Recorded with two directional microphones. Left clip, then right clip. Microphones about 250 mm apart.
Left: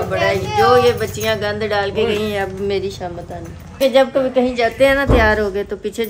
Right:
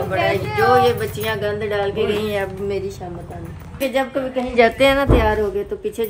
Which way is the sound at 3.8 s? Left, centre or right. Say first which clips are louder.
Left 7 dB; left.